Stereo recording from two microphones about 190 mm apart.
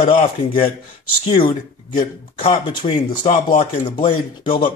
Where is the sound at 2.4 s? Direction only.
30° left (ahead or behind).